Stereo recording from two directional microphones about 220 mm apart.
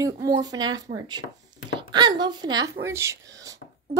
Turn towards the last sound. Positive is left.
turn(degrees=-15)  # may be behind; listen again after turning